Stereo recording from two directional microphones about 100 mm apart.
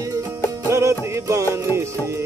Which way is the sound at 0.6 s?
30° right (ahead or behind).